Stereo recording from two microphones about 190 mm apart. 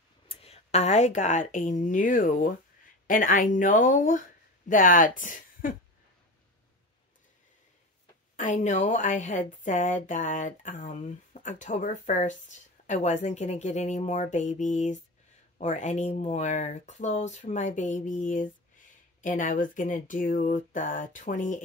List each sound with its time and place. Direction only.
0.3 s speech: 30° left (ahead or behind)
8.4 s a woman's voice: 40° left (ahead or behind)